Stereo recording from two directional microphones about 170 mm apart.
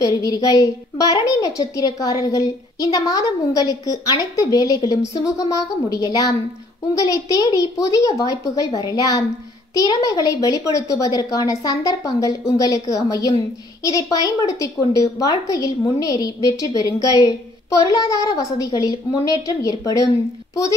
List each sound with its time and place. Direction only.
0.0 s a woman's voice: 20° left (ahead or behind)